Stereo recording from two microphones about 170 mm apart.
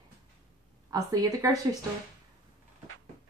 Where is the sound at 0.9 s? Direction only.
20° right (ahead or behind).